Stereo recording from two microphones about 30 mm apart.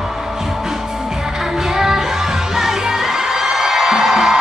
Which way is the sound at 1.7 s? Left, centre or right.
Centre.